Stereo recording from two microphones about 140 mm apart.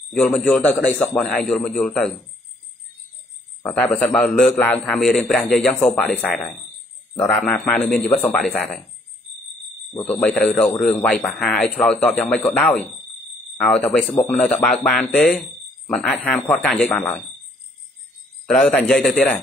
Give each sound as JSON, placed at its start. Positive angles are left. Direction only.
{"t": 0.1, "sound": "a man's voice", "side_deg": 5}
{"t": 3.6, "sound": "a man's voice", "side_deg": 10}
{"t": 8.1, "sound": "a man's voice", "side_deg": 15}
{"t": 8.4, "sound": "a man's voice", "side_deg": 5}
{"t": 10.2, "sound": "a man's voice", "side_deg": 10}
{"t": 18.5, "sound": "a man's voice", "side_deg": 5}